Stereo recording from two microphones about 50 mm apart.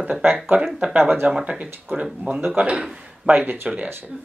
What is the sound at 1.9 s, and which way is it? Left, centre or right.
Speech, right.